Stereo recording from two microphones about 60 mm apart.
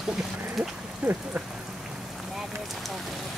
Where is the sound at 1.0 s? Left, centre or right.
Right.